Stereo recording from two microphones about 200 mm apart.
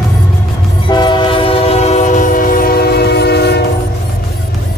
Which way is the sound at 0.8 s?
25° left (ahead or behind).